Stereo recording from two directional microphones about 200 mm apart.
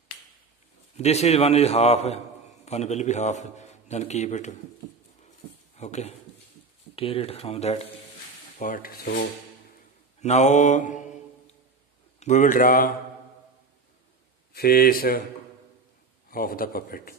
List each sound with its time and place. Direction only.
0.9 s a man's voice: 35° left (ahead or behind)
5.8 s speech: 35° left (ahead or behind)
8.5 s a man's voice: 40° left (ahead or behind)
10.2 s mantra: 35° left (ahead or behind)
12.2 s speech: 40° left (ahead or behind)
14.5 s a man's voice: 50° left (ahead or behind)
16.3 s a man's voice: 45° left (ahead or behind)